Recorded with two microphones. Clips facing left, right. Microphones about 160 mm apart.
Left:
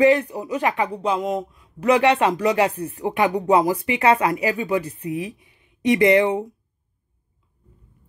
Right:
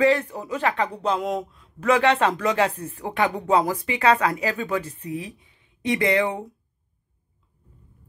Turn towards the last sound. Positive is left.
turn(degrees=20)  # may be behind; listen again after turning